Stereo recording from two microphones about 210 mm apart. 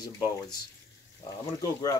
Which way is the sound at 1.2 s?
15° left (ahead or behind).